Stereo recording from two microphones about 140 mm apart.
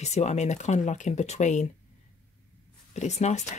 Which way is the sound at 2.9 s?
55° left (ahead or behind).